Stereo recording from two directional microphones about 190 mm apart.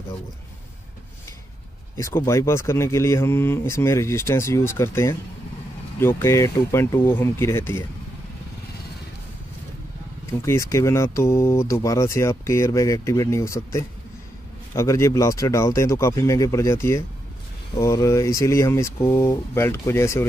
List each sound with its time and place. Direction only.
2.0 s speech: 15° left (ahead or behind)
10.4 s speech: 15° left (ahead or behind)